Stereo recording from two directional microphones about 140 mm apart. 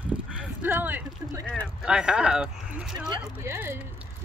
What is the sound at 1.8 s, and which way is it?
Speech, 5° right (ahead or behind).